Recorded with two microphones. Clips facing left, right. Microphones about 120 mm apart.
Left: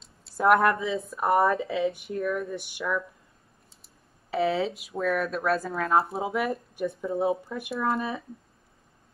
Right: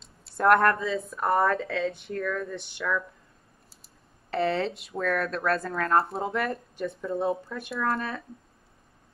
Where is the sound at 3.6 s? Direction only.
Centre (ahead or behind).